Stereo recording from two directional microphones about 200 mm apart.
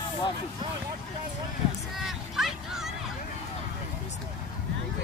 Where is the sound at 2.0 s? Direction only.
Centre (ahead or behind).